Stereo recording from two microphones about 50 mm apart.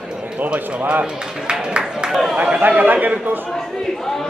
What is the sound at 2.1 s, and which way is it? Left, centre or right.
Speech, centre.